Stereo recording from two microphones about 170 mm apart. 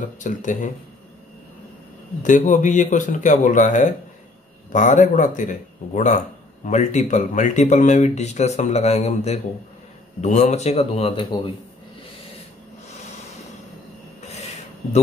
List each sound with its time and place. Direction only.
0.2 s a man's voice: 50° left (ahead or behind)
2.2 s a man's voice: 50° left (ahead or behind); by 11.5 s 30° left (ahead or behind)
14.3 s a sound: 40° left (ahead or behind)